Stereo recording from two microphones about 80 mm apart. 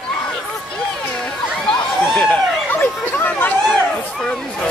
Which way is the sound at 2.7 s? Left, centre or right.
Left.